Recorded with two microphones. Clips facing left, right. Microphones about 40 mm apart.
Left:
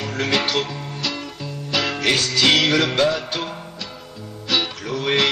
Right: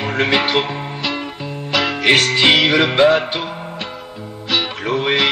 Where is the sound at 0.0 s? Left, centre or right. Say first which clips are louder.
Right 5 dB; right.